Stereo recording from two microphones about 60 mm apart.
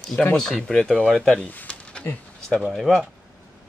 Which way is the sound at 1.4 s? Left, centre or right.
Left.